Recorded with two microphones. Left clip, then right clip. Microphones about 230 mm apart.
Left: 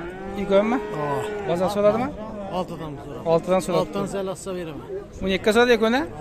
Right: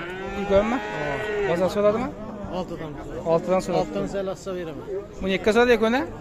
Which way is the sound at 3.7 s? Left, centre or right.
Left.